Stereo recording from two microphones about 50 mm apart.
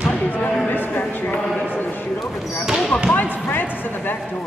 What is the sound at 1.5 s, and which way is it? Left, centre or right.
Clip-clop, left.